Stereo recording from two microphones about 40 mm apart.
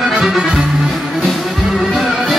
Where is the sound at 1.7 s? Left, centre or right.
Centre.